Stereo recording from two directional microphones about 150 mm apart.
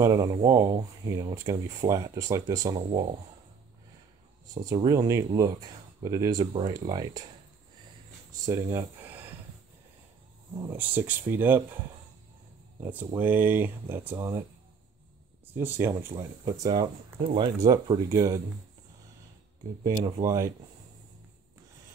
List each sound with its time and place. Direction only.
0.2 s speech: 25° right (ahead or behind)
2.9 s speech: 40° right (ahead or behind)
4.6 s speech: 25° right (ahead or behind)
8.3 s speech: 20° right (ahead or behind)
10.7 s speech: 15° right (ahead or behind)
12.8 s speech: 15° right (ahead or behind)
15.5 s speech: 15° right (ahead or behind)
19.9 s speech: 25° right (ahead or behind)